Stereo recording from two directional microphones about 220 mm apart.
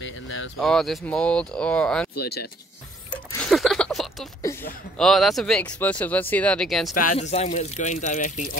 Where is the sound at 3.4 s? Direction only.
Centre (ahead or behind).